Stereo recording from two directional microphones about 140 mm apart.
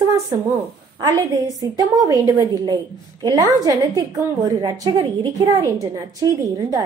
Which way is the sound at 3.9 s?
30° right (ahead or behind).